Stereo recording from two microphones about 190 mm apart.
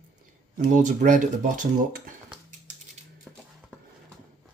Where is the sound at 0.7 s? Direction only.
40° right (ahead or behind).